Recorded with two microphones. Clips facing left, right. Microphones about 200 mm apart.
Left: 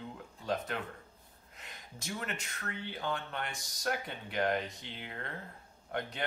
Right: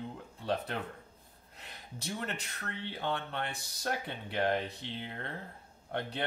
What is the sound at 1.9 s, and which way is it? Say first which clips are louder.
Speech: right 2 dB; 35° right (ahead or behind).